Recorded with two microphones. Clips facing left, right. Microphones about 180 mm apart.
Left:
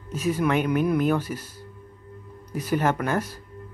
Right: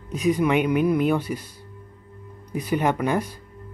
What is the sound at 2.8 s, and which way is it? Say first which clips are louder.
Speech: right 2 dB; 15° right (ahead or behind).